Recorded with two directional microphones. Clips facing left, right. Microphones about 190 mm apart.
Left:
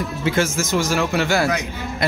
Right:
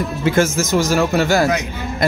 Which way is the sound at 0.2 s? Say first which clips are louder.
Right 4 dB; 50° right (ahead or behind).